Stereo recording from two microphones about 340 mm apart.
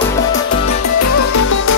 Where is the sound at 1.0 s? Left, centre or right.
Left.